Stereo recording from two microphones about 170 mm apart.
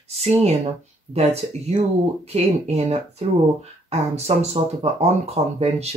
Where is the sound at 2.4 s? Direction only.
35° right (ahead or behind).